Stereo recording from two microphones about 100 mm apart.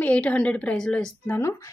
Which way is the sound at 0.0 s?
15° left (ahead or behind).